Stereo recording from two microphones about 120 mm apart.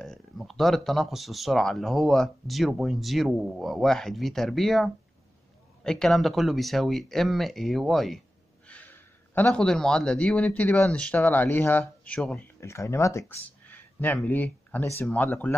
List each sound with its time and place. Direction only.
0.0 s speech: centre (ahead or behind)
8.6 s a man's voice: 15° left (ahead or behind)
12.5 s speech: 25° left (ahead or behind)
13.7 s a sound: 15° left (ahead or behind)
15.0 s speech: 15° left (ahead or behind)